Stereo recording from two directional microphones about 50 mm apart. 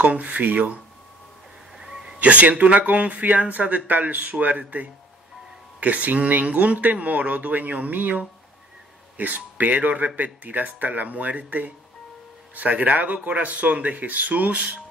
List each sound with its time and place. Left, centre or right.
0.0 s speech: right
1.8 s a sound: centre
2.1 s speech: right